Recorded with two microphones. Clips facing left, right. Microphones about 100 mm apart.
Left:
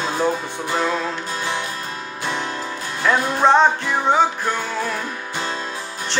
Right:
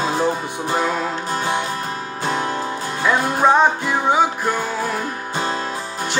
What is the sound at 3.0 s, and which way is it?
Music, 10° right (ahead or behind).